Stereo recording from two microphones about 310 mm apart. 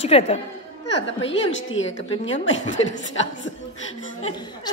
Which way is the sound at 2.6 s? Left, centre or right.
Left.